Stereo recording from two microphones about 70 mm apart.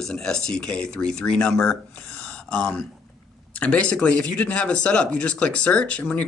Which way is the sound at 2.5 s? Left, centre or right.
Centre.